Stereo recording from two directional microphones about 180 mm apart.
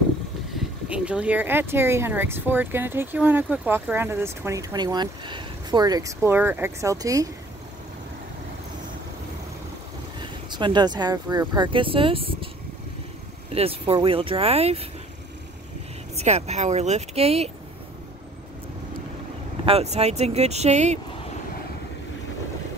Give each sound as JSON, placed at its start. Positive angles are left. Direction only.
{"t": 0.6, "sound": "speech", "side_deg": -5}
{"t": 10.2, "sound": "speech", "side_deg": -25}
{"t": 13.5, "sound": "speech", "side_deg": -35}
{"t": 16.2, "sound": "speech", "side_deg": -35}
{"t": 19.6, "sound": "speech", "side_deg": -35}